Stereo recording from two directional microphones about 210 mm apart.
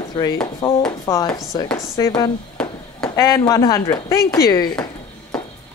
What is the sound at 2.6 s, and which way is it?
Chop, 5° left (ahead or behind).